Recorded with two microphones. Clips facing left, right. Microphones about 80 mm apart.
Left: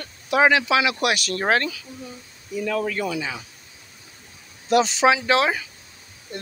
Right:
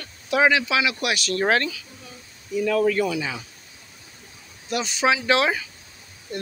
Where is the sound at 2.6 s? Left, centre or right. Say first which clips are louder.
Right 4 dB; centre.